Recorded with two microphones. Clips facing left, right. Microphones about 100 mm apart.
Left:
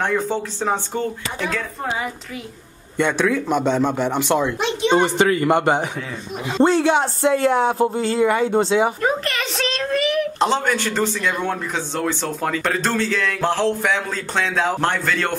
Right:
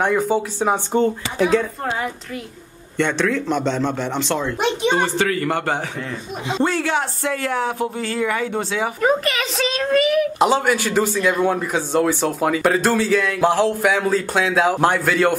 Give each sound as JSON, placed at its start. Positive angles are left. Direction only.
{"t": 0.0, "sound": "a woman's voice", "side_deg": -10}
{"t": 3.0, "sound": "speech", "side_deg": 10}
{"t": 9.0, "sound": "a woman's voice", "side_deg": -5}